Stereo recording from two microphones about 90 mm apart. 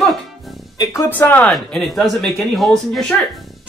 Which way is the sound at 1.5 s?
Centre (ahead or behind).